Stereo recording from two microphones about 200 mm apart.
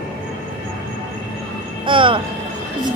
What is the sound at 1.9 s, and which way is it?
Vehicle, 25° right (ahead or behind).